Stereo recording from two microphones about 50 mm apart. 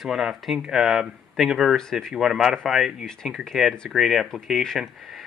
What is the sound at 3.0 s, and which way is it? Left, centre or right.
Speech, centre.